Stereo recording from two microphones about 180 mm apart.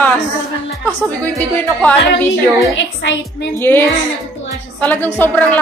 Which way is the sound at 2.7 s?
90° left.